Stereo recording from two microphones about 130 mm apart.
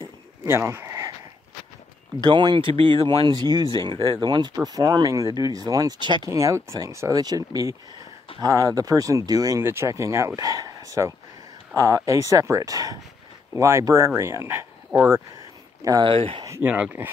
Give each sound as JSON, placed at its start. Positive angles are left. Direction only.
{"t": 0.5, "sound": "speech", "side_deg": -20}
{"t": 2.1, "sound": "speech", "side_deg": -35}
{"t": 6.2, "sound": "speech", "side_deg": -25}
{"t": 15.8, "sound": "speech", "side_deg": -30}
{"t": 16.1, "sound": "speech", "side_deg": -45}
{"t": 16.4, "sound": "speech", "side_deg": -20}